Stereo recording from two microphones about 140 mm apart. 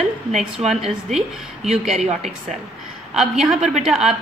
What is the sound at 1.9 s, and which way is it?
Speech, 50° right (ahead or behind).